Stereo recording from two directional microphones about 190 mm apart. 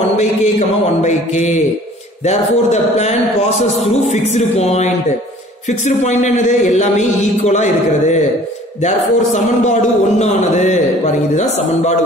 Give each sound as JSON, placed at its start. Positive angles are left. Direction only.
{"t": 0.1, "sound": "speech", "side_deg": 35}